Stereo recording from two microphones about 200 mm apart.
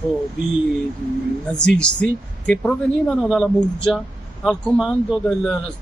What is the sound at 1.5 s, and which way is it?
A man's voice, 5° left (ahead or behind).